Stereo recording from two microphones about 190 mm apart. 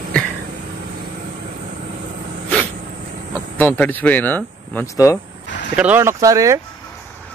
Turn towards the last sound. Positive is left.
turn(degrees=-15)  # may be behind; listen again after turning